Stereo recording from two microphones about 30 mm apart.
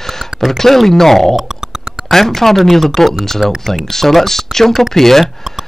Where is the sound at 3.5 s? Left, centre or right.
Centre.